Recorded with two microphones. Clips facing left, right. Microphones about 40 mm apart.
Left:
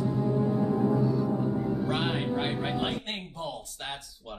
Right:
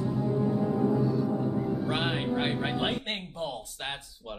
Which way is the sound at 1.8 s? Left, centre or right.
Centre.